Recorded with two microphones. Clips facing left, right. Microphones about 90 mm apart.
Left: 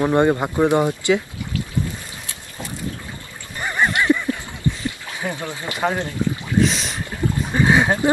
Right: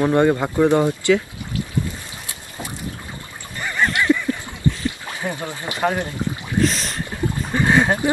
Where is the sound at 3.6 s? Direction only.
20° left (ahead or behind).